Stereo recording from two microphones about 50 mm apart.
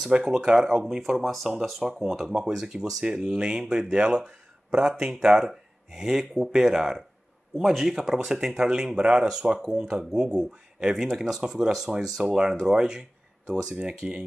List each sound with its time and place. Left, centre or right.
0.0 s speech: centre